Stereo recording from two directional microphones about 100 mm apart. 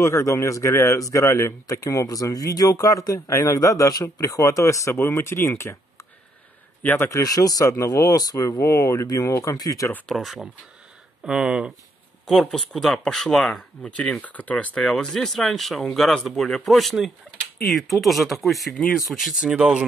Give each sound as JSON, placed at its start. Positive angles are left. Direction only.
{"t": 0.0, "sound": "a man's voice", "side_deg": 30}
{"t": 7.1, "sound": "a man's voice", "side_deg": 35}
{"t": 10.0, "sound": "speech", "side_deg": 0}
{"t": 12.3, "sound": "speech", "side_deg": 0}